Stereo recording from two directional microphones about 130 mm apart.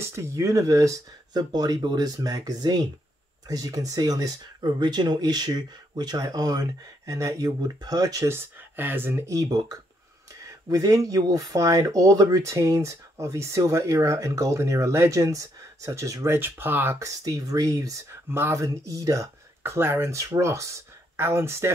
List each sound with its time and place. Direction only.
0.0 s speech: 20° right (ahead or behind)